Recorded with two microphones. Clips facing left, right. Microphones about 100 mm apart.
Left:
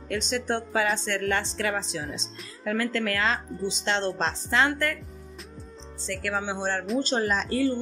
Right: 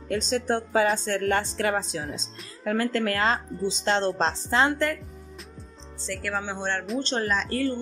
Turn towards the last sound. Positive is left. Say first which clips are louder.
# left 1 dB
turn(degrees=15)  # may be behind; listen again after turning